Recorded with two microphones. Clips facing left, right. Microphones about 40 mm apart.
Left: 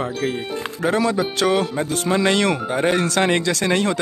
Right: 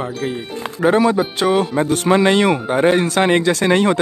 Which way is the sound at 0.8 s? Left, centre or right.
Right.